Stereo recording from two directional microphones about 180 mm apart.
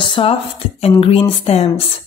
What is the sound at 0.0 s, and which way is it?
Speech, 30° left (ahead or behind).